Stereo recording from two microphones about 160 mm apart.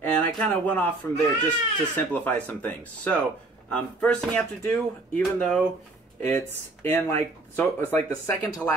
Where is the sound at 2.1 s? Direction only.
10° left (ahead or behind).